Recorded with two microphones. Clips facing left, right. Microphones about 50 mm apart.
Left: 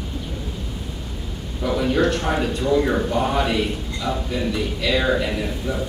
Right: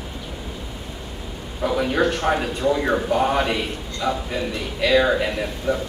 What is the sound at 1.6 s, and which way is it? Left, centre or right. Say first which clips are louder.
A man's voice: even; centre.